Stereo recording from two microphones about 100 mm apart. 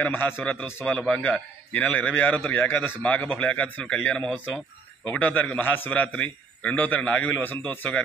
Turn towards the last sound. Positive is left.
turn(degrees=15)  # may be behind; listen again after turning